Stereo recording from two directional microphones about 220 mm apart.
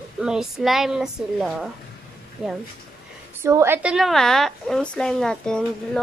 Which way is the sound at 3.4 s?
10° right (ahead or behind).